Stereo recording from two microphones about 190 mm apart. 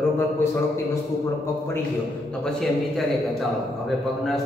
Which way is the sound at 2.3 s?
Centre (ahead or behind).